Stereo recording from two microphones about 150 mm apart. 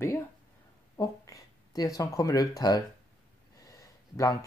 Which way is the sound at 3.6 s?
20° left (ahead or behind).